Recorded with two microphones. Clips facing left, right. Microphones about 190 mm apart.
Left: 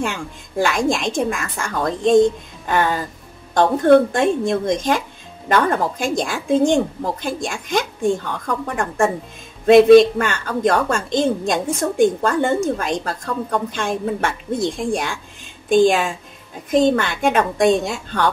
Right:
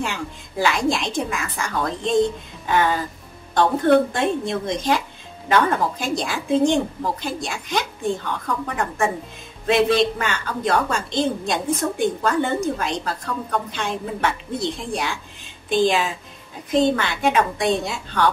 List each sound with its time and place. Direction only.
0.0 s a woman's voice: 50° left (ahead or behind)
3.5 s a woman's voice: 50° left (ahead or behind)